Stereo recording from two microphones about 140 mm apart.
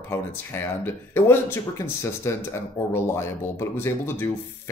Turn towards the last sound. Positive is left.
turn(degrees=15)  # may be behind; listen again after turning